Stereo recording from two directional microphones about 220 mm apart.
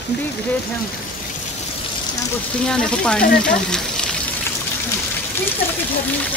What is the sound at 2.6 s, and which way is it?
Speech, 5° left (ahead or behind).